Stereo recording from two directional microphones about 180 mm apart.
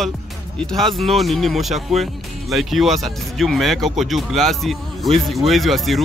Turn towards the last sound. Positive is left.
turn(degrees=0)  # may be behind; listen again after turning